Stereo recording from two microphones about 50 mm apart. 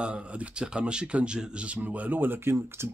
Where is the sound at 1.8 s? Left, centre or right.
Right.